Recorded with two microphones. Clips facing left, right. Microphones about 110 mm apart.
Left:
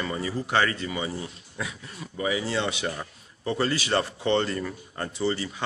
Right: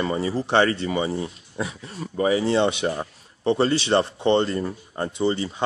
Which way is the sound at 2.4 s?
25° right (ahead or behind).